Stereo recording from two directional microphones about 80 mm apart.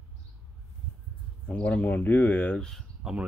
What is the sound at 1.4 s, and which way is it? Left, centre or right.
Speech, centre.